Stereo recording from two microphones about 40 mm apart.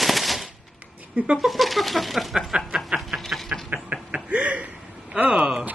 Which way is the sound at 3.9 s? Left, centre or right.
Right.